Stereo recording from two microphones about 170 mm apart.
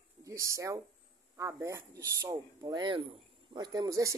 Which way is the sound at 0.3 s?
20° right (ahead or behind).